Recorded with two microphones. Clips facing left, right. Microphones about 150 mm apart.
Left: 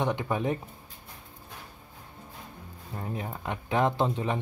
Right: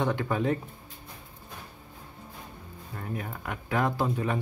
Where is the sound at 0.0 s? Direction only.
20° left (ahead or behind).